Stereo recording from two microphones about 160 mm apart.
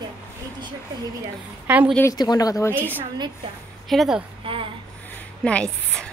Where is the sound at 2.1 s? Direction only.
25° left (ahead or behind).